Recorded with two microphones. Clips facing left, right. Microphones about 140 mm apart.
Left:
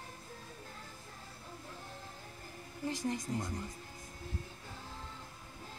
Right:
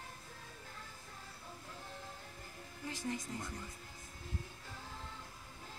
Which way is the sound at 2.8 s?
35° left (ahead or behind).